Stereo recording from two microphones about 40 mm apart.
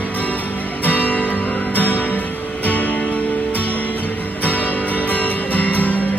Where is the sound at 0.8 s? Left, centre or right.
Left.